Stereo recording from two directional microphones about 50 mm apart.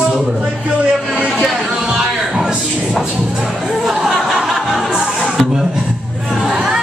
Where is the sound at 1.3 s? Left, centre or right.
Centre.